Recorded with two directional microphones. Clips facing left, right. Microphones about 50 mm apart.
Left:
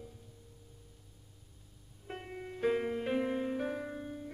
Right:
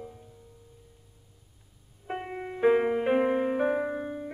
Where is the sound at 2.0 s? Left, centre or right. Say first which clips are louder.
Right 9 dB; right.